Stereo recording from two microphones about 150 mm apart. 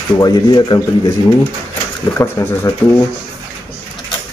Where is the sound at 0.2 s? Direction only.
30° left (ahead or behind).